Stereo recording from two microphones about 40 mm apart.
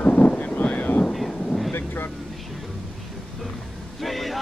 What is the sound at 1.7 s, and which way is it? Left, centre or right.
Vehicle, left.